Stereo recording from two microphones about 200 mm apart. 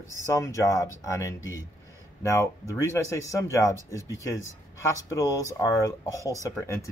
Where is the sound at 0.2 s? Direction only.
15° left (ahead or behind).